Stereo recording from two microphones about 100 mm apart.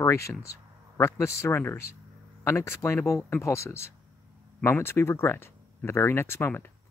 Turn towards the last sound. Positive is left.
turn(degrees=20)  # may be behind; listen again after turning